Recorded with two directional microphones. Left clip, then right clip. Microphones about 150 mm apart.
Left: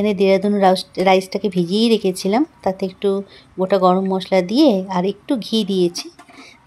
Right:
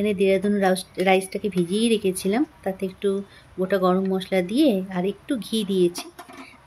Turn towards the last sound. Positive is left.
turn(degrees=10)  # may be behind; listen again after turning